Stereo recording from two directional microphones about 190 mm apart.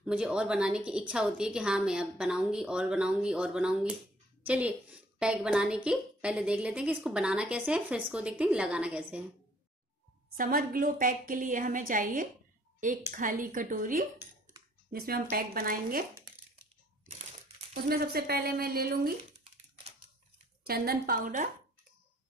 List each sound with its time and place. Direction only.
0.0 s speech: 5° right (ahead or behind)
10.3 s a woman's voice: 50° right (ahead or behind)
17.8 s a woman's voice: 55° right (ahead or behind)
20.6 s a woman's voice: 55° right (ahead or behind)